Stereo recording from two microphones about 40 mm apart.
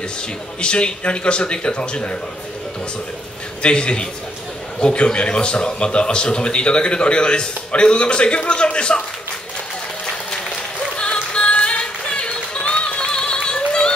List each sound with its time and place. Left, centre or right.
0.6 s a man's voice: left
3.6 s a man's voice: left
11.0 s music: left
13.7 s a sound: left